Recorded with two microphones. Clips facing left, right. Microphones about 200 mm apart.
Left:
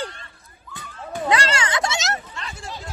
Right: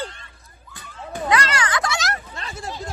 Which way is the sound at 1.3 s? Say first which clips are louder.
Even; 25° left (ahead or behind).